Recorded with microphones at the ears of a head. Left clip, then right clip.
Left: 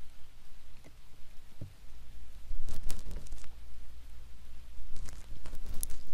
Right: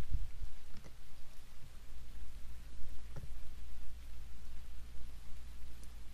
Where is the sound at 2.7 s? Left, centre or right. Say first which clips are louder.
Left 11 dB; left.